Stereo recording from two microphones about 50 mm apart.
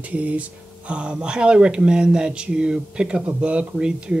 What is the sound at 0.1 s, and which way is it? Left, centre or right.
Speech, right.